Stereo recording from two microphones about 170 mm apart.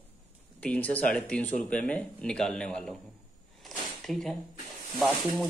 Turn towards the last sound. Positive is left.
turn(degrees=0)  # may be behind; listen again after turning